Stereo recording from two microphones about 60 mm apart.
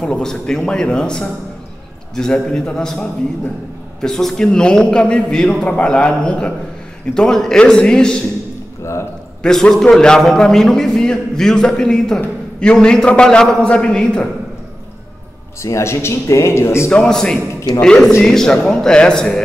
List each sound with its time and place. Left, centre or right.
0.0 s a man's voice: centre
9.4 s a man's voice: centre
15.6 s speech: left
16.9 s a man's voice: centre